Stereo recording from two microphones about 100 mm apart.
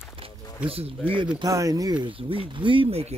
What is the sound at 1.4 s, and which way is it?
Speech, 35° right (ahead or behind).